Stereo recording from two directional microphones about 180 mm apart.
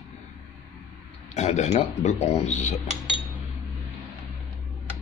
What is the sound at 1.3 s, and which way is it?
Speech, 40° left (ahead or behind).